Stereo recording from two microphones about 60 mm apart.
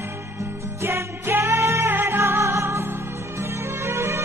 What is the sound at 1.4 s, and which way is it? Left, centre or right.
Music, right.